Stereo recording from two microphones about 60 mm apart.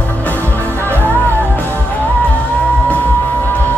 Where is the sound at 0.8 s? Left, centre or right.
Right.